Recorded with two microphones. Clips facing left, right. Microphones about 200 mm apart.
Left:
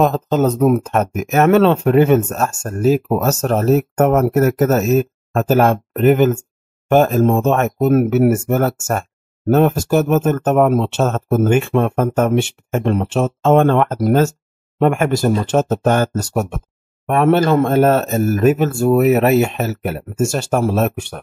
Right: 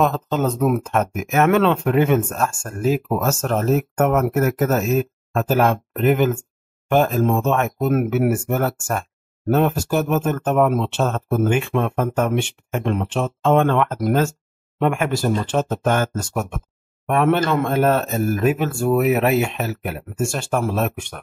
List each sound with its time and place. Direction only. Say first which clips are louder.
0.0 s speech: left 5 dB; 40° left (ahead or behind)